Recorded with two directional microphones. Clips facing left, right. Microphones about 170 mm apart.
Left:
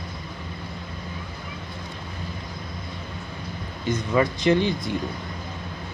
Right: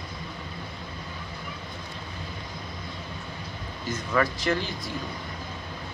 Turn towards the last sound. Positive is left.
turn(degrees=20)  # may be behind; listen again after turning